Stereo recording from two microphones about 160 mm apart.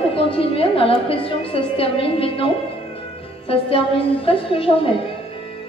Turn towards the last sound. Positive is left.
turn(degrees=35)  # may be behind; listen again after turning